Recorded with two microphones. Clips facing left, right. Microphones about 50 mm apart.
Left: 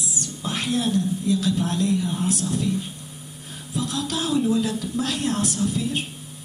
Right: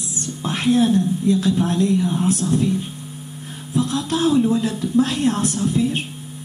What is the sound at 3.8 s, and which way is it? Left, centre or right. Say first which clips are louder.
Speech: right 6 dB; right.